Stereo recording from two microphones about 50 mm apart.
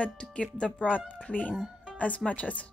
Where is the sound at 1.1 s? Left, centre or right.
Left.